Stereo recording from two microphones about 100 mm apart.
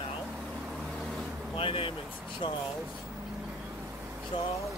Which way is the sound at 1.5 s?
65° left (ahead or behind).